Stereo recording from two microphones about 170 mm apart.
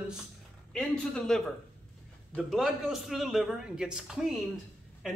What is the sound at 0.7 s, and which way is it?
Speech, 5° left (ahead or behind).